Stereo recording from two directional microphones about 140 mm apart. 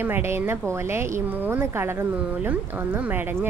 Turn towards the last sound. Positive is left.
turn(degrees=-15)  # may be behind; listen again after turning